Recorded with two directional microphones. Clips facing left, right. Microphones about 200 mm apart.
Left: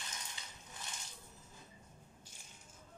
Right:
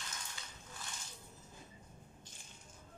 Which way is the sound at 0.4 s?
20° left (ahead or behind).